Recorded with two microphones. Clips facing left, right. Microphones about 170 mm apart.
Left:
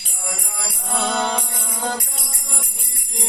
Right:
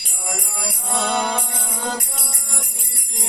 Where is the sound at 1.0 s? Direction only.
10° right (ahead or behind).